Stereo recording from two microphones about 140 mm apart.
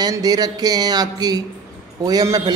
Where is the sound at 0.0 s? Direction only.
25° right (ahead or behind).